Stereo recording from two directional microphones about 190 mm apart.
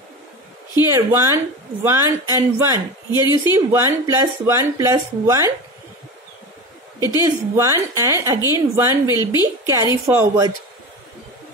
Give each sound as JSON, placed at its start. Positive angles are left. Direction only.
{"t": 0.9, "sound": "speech", "side_deg": -15}
{"t": 3.1, "sound": "speech", "side_deg": 20}
{"t": 3.5, "sound": "speech", "side_deg": -15}
{"t": 7.2, "sound": "speech", "side_deg": -15}